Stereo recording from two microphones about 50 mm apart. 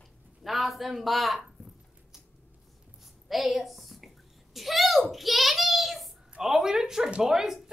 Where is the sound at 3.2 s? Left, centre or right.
Centre.